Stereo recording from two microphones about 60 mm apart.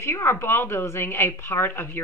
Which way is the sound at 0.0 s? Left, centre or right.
Left.